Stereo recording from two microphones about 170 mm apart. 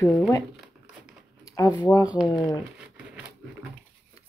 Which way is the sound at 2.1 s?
5° right (ahead or behind).